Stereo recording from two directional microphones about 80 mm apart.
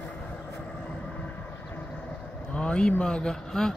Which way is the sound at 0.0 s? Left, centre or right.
Centre.